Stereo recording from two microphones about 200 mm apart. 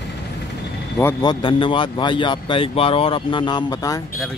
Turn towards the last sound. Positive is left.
turn(degrees=20)  # may be behind; listen again after turning